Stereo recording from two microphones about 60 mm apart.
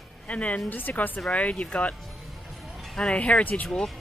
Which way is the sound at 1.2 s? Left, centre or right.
Centre.